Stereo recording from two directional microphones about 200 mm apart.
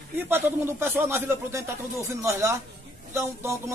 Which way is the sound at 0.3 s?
10° right (ahead or behind).